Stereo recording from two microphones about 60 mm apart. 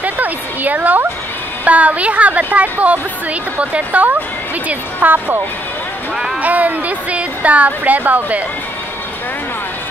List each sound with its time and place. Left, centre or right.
0.0 s a sound: right
1.6 s a woman's voice: right
6.4 s speech: right